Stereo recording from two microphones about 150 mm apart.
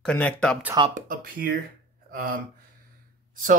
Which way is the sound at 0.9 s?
60° right (ahead or behind).